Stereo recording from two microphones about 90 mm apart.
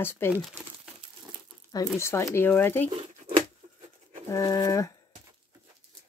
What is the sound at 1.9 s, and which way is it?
Speech, 30° left (ahead or behind).